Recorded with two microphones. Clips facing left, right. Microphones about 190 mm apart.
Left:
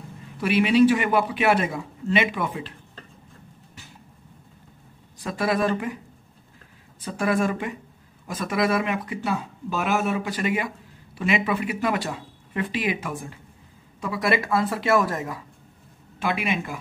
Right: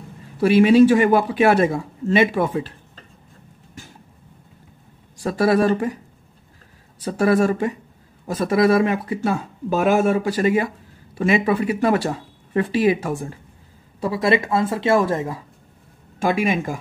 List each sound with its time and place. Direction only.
0.4 s speech: 40° right (ahead or behind)
5.2 s speech: 40° right (ahead or behind)
7.1 s speech: 40° right (ahead or behind)
14.0 s speech: 25° right (ahead or behind)
16.2 s speech: 45° right (ahead or behind)